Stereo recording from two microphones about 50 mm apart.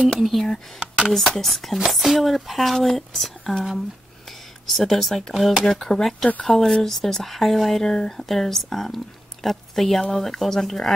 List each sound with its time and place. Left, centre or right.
0.2 s speech: centre
0.7 s a sound: centre
1.1 s speech: centre
7.8 s speech: centre